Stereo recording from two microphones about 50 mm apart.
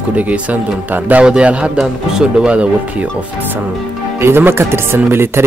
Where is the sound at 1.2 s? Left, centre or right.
Right.